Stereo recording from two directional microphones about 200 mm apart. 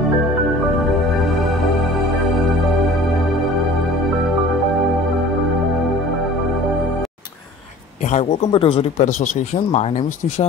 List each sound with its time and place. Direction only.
8.1 s speech: 30° left (ahead or behind)